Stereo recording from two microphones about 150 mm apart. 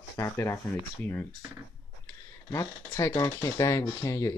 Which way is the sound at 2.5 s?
20° left (ahead or behind).